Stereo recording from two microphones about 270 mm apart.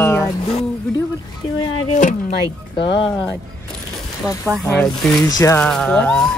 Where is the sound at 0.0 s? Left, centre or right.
Centre.